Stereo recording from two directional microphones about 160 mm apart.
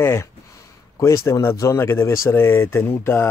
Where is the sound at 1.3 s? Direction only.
15° left (ahead or behind).